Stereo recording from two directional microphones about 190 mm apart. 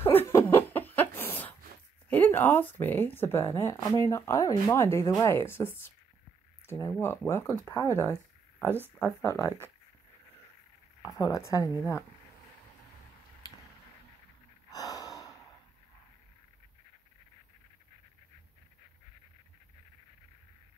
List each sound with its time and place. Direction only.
0.0 s a sound: 10° left (ahead or behind)
2.0 s speech: 10° left (ahead or behind)
11.0 s speech: 20° left (ahead or behind)
14.7 s gasp: 20° left (ahead or behind)